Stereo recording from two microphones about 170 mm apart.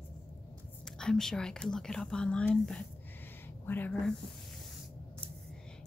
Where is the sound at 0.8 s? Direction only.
5° left (ahead or behind).